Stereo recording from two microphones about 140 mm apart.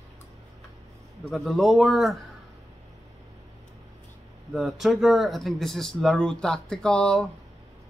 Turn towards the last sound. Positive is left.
turn(degrees=5)  # may be behind; listen again after turning